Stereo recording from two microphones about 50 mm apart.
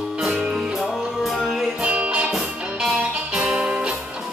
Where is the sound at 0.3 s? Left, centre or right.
Right.